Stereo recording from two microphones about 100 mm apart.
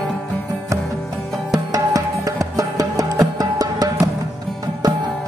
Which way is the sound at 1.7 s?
35° right (ahead or behind).